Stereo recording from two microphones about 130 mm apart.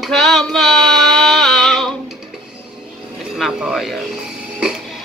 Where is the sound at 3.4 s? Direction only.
5° right (ahead or behind).